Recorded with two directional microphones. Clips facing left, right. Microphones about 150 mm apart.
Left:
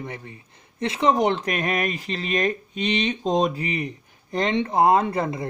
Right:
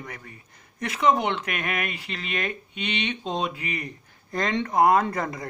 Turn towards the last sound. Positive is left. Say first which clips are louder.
# left 2 dB
turn(degrees=25)  # may be behind; listen again after turning